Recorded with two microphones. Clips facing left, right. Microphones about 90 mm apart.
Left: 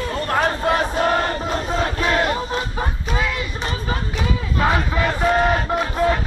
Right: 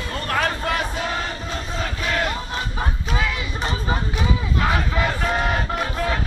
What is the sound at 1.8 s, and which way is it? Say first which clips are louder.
Battle cry: left 3 dB; 35° left (ahead or behind).